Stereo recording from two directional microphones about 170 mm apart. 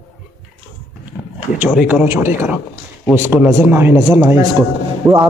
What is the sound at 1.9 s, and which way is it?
A man's voice, 10° right (ahead or behind).